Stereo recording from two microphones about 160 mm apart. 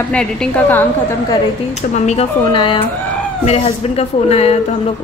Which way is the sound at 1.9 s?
45° left (ahead or behind).